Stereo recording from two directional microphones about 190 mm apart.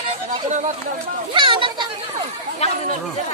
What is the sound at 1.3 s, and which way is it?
Children playing, 25° right (ahead or behind).